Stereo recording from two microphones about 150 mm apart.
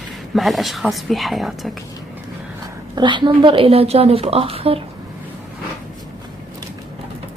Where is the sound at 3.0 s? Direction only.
30° right (ahead or behind).